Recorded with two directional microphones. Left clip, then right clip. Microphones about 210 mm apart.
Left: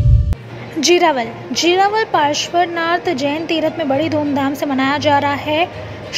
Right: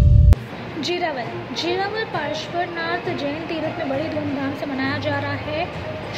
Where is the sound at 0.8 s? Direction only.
45° left (ahead or behind).